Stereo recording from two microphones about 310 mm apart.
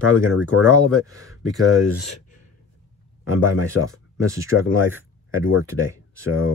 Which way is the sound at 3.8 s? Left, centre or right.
Left.